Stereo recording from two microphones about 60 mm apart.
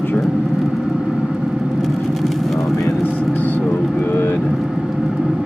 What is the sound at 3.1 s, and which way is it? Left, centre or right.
Vehicle, left.